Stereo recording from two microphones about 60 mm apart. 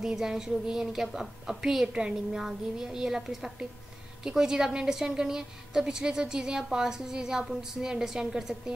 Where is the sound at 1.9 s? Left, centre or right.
Centre.